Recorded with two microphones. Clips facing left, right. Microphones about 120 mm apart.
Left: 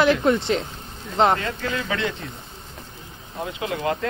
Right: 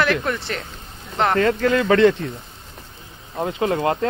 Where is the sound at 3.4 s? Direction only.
40° right (ahead or behind).